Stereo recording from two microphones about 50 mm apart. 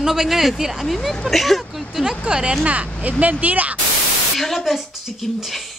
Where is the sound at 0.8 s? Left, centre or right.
Centre.